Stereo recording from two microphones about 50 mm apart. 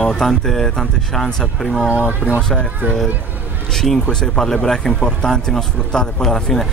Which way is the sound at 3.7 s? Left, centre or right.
Centre.